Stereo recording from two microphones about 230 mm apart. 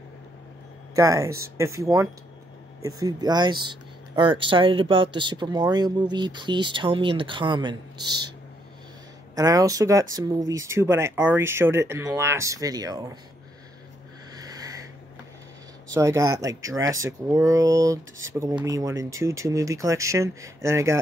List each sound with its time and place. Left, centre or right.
0.9 s speech: centre
9.3 s speech: centre
14.3 s wheeze: centre
15.9 s speech: centre